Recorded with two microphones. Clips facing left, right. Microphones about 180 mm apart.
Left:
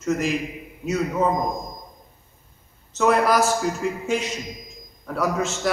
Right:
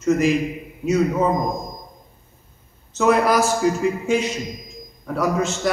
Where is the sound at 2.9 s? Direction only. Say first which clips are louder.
Right 2 dB; centre (ahead or behind).